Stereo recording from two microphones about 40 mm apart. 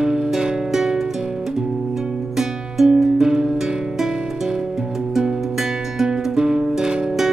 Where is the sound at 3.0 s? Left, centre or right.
Centre.